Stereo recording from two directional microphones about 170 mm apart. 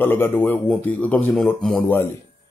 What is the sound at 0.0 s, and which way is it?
Speech, 10° left (ahead or behind).